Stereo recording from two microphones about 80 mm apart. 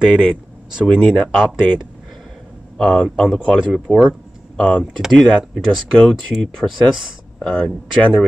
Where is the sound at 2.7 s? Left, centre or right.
Centre.